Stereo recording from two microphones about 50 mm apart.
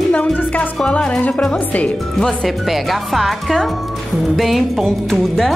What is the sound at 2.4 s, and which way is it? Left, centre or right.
Speech, centre.